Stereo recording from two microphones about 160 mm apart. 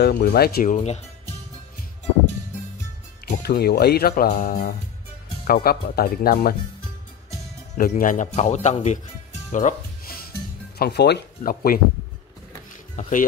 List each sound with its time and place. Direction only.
0.0 s speech: 85° left
0.7 s speech: 45° left (ahead or behind)
3.3 s speech: 85° left
4.2 s speech: 50° left (ahead or behind)
5.5 s speech: 70° left (ahead or behind)
7.7 s speech: 55° left (ahead or behind)
9.5 s music: 50° left (ahead or behind)
10.8 s speech: 90° left; by 11.8 s 65° left (ahead or behind)